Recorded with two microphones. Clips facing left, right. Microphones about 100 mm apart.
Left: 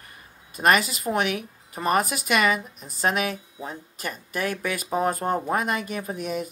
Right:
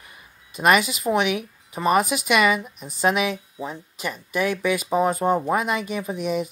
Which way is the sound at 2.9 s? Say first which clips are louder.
Right 3 dB; 40° left (ahead or behind).